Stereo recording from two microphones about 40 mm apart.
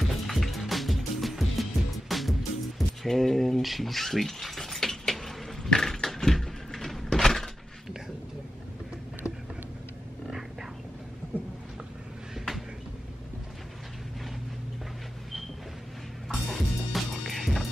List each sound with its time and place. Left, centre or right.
0.0 s music: centre
3.0 s a sound: centre
16.3 s music: centre